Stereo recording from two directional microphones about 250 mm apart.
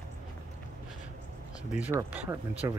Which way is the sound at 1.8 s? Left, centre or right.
Centre.